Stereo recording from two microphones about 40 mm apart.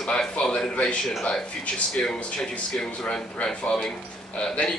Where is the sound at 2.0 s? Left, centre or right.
Centre.